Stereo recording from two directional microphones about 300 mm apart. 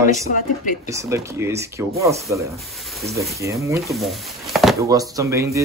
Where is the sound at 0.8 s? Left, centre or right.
Centre.